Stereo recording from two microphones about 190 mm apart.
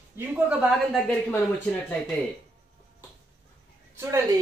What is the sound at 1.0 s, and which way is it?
Speech, 10° left (ahead or behind).